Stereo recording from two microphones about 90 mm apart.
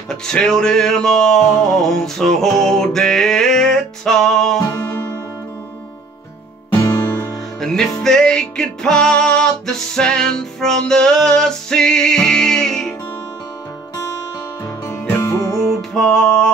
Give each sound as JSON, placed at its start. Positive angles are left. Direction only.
{"t": 0.1, "sound": "music", "side_deg": 5}
{"t": 6.8, "sound": "music", "side_deg": 45}
{"t": 7.6, "sound": "music", "side_deg": 5}
{"t": 15.6, "sound": "music", "side_deg": 5}